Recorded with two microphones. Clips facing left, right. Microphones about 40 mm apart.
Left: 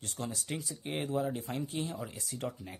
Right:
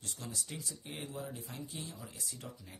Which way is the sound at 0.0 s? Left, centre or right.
Left.